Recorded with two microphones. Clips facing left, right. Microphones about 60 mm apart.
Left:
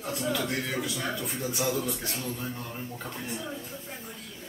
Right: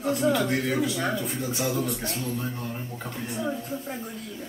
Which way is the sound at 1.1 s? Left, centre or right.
Centre.